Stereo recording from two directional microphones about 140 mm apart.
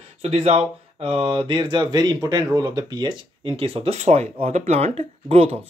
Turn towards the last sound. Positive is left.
turn(degrees=-45)  # may be behind; listen again after turning